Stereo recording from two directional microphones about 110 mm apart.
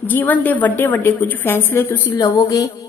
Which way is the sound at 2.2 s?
30° left (ahead or behind).